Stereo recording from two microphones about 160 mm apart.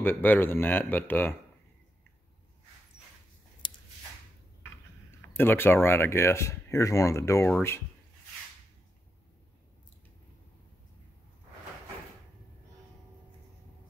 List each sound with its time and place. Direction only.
0.0 s speech: 10° left (ahead or behind)
3.6 s a sound: 30° left (ahead or behind)
5.3 s speech: 15° left (ahead or behind)